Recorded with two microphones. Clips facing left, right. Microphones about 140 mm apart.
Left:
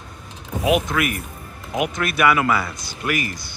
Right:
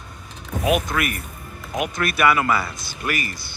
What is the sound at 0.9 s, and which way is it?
Speech, 20° left (ahead or behind).